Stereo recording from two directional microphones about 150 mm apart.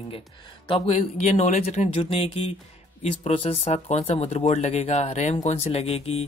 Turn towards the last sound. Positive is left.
turn(degrees=40)  # may be behind; listen again after turning